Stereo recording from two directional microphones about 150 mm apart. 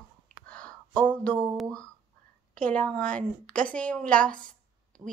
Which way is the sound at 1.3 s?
25° right (ahead or behind).